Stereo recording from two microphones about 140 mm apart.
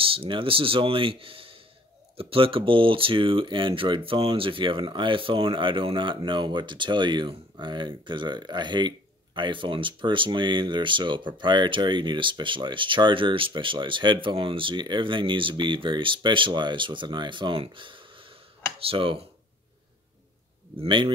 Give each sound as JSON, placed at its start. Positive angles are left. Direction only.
{"t": 0.0, "sound": "speech", "side_deg": -40}
{"t": 20.8, "sound": "speech", "side_deg": -35}